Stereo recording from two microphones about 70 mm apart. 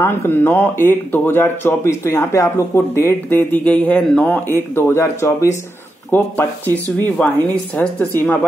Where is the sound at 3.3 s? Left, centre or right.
Left.